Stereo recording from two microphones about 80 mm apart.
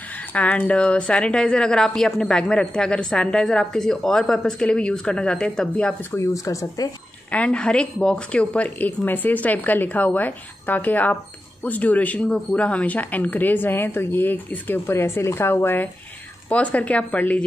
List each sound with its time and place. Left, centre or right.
0.3 s a woman's voice: centre
6.1 s speech: left
7.2 s a woman's voice: centre